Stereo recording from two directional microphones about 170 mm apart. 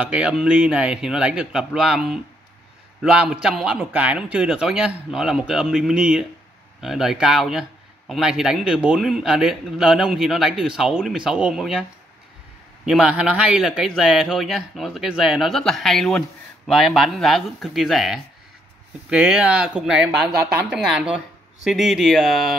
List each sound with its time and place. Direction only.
0.0 s a man's voice: 5° right (ahead or behind)
12.8 s a man's voice: 5° right (ahead or behind)